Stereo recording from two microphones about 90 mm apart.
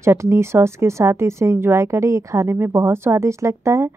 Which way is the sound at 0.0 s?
30° right (ahead or behind).